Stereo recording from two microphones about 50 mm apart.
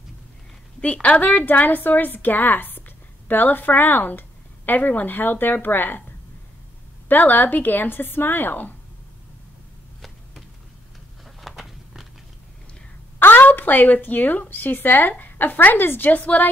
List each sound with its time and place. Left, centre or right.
0.7 s a woman's voice: left
7.1 s a woman's voice: left
11.4 s walk: centre
13.2 s a woman's voice: left
16.1 s a woman's voice: left